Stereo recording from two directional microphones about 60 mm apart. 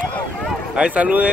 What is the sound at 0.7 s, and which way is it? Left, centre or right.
Speech, right.